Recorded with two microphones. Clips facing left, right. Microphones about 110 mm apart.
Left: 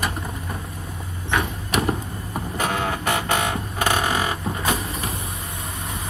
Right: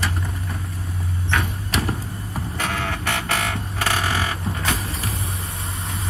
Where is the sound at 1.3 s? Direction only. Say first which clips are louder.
Left 2 dB; 25° left (ahead or behind).